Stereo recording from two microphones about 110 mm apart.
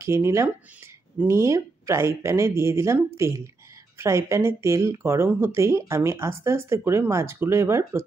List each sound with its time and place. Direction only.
0.0 s speech: 25° right (ahead or behind)